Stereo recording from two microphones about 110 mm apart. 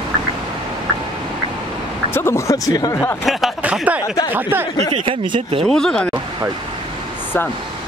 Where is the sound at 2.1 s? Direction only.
25° left (ahead or behind).